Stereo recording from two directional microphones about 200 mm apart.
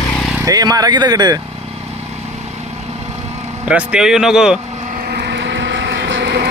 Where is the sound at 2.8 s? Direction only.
30° right (ahead or behind).